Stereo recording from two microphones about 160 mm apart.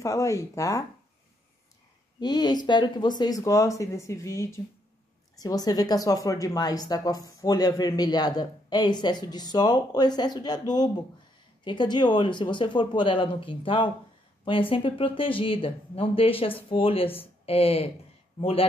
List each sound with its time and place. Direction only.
0.0 s speech: 20° left (ahead or behind)
2.1 s speech: 25° left (ahead or behind)
11.6 s speech: 30° left (ahead or behind)